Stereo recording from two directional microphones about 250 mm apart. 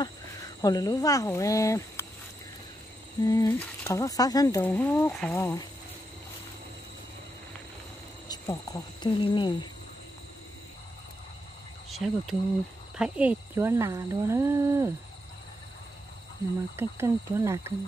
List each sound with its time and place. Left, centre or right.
0.6 s speech: centre
3.2 s speech: centre
8.3 s speech: centre
11.9 s speech: centre
16.7 s speech: centre